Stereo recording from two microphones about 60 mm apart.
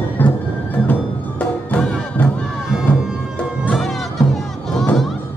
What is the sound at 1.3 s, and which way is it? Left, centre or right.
Music, left.